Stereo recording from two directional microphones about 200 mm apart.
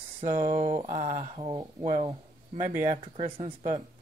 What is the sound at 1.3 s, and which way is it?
Speech, 25° right (ahead or behind).